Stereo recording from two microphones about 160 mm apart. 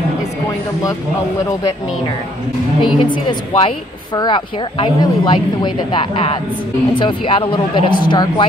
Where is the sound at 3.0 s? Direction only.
30° left (ahead or behind).